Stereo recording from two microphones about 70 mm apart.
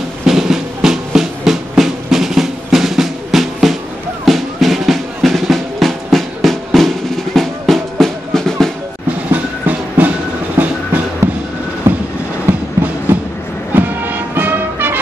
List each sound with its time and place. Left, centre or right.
0.2 s music: centre
9.3 s music: right
11.2 s train: right
11.9 s train: right
13.1 s a sound: right
13.7 s music: right